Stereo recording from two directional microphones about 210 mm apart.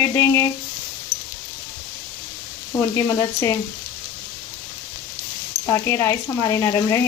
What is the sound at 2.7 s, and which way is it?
Speech, 10° left (ahead or behind).